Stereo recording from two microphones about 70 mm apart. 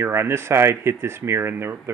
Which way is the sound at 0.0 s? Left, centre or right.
Right.